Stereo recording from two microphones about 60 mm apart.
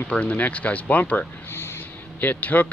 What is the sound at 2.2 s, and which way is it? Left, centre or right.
Speech, left.